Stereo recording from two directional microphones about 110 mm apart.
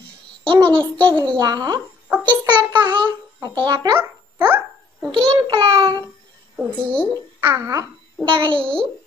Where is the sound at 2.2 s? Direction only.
45° right (ahead or behind).